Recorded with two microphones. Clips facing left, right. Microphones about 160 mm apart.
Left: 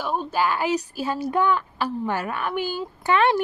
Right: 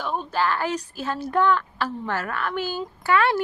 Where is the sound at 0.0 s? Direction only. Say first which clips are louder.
Left 1 dB; 10° left (ahead or behind).